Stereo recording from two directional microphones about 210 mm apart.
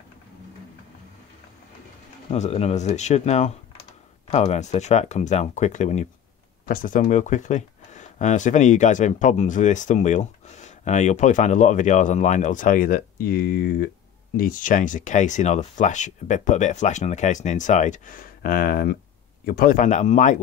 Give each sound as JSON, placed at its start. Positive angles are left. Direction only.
{"t": 2.3, "sound": "speech", "side_deg": 30}